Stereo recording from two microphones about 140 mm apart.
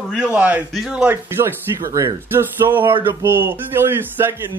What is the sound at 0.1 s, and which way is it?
Speech, 5° right (ahead or behind).